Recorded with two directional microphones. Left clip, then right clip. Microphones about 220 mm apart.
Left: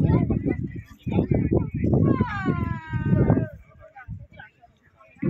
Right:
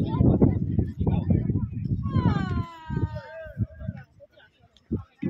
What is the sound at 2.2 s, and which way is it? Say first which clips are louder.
Cat: left 2 dB; 35° left (ahead or behind).